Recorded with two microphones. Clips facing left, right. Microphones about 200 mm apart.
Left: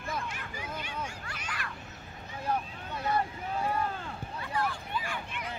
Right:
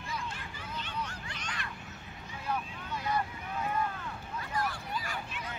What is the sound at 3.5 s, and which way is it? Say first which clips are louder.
Boat: left 2 dB; 30° left (ahead or behind).